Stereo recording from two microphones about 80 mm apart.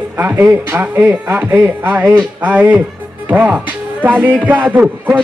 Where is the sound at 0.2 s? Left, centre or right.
Right.